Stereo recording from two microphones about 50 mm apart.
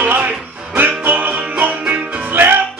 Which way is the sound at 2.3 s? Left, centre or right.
Right.